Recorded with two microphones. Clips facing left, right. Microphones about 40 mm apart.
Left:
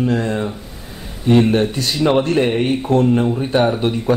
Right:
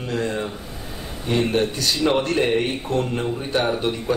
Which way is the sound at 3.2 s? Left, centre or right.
Centre.